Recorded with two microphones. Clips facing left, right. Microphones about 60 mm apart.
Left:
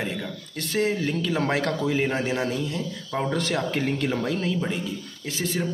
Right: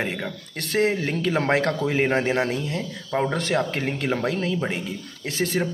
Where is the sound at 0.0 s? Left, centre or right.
Right.